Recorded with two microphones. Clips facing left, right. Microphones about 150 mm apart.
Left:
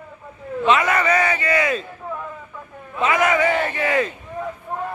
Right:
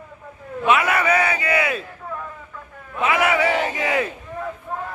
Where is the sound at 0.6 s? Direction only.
10° right (ahead or behind).